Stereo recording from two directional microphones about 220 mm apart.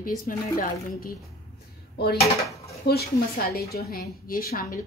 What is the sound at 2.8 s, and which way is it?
A woman's voice, 50° left (ahead or behind).